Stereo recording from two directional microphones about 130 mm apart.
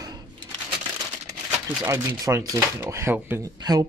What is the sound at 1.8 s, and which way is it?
Speech, 20° right (ahead or behind).